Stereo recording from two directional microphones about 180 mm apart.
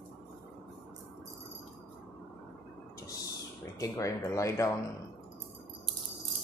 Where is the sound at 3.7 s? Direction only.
20° left (ahead or behind).